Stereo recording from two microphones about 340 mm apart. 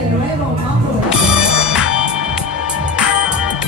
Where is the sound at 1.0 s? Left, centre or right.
Centre.